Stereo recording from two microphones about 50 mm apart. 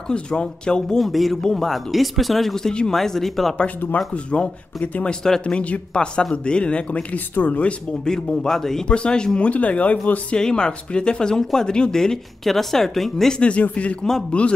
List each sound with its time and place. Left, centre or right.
0.1 s speech: centre
0.9 s speech: centre
4.1 s speech: left
4.7 s speech: left
8.0 s speech: centre
8.8 s speech: centre
9.5 s speech: left
10.3 s speech: centre
13.3 s speech: left